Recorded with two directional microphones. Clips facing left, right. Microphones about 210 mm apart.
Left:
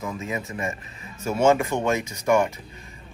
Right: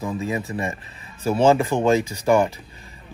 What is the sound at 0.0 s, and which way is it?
Speech, 35° right (ahead or behind).